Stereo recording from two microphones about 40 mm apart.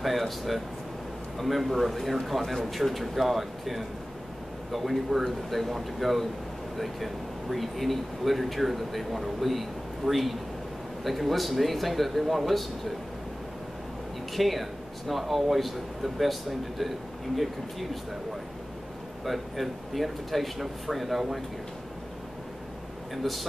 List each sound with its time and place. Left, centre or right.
0.0 s speech: centre
14.3 s speech: centre
19.2 s speech: centre
23.1 s speech: centre